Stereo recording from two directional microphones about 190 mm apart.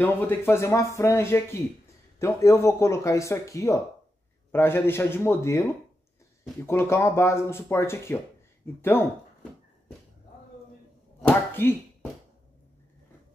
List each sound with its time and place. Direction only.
0.0 s speech: 10° left (ahead or behind)
11.2 s speech: 10° left (ahead or behind)